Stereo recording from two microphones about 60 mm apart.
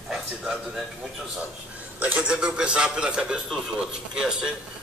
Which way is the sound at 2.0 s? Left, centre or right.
Right.